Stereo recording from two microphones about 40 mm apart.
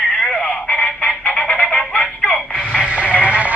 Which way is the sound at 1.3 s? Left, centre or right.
Left.